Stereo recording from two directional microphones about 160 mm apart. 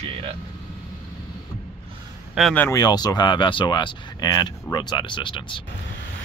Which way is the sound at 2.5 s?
10° left (ahead or behind).